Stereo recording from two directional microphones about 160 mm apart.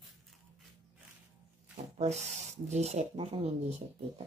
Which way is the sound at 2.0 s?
45° right (ahead or behind).